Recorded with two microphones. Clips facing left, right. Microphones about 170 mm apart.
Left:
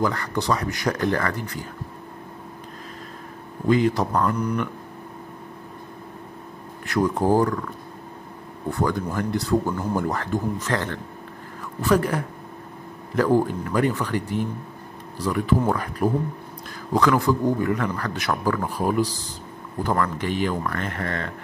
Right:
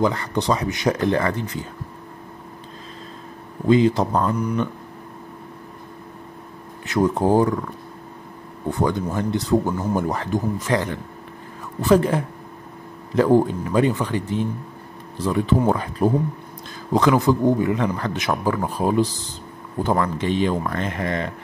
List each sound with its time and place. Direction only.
0.0 s speech: 20° right (ahead or behind)
3.6 s speech: 25° right (ahead or behind)
6.9 s speech: 20° right (ahead or behind)
8.6 s speech: 20° right (ahead or behind)